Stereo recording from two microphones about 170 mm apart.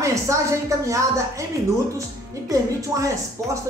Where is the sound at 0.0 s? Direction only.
20° right (ahead or behind).